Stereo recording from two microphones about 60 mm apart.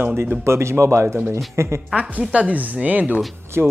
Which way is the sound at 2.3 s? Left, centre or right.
Right.